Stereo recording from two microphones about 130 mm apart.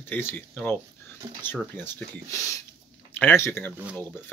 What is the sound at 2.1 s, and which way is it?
Speech, 25° left (ahead or behind).